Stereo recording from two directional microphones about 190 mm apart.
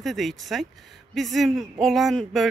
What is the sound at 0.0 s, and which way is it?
Speech, centre (ahead or behind).